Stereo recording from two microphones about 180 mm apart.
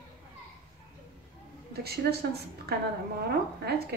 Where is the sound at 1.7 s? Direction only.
60° right (ahead or behind).